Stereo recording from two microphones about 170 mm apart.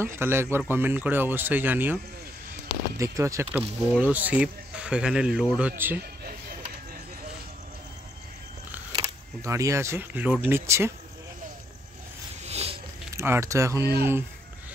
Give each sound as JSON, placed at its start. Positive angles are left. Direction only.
{"t": 0.0, "sound": "speech", "side_deg": -15}
{"t": 3.0, "sound": "speech", "side_deg": -20}
{"t": 8.9, "sound": "speech", "side_deg": -20}
{"t": 12.4, "sound": "a sound", "side_deg": -35}
{"t": 13.1, "sound": "speech", "side_deg": -15}